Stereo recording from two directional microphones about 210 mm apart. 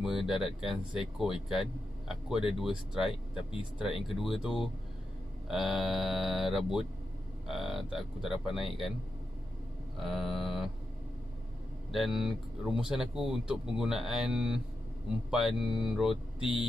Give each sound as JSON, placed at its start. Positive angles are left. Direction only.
{"t": 0.0, "sound": "speech", "side_deg": 0}
{"t": 9.9, "sound": "speech", "side_deg": 0}
{"t": 11.9, "sound": "speech", "side_deg": 0}
{"t": 16.3, "sound": "speech", "side_deg": 25}